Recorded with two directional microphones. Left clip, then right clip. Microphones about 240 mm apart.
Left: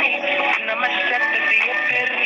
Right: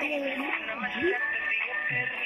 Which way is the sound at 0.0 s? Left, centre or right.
Left.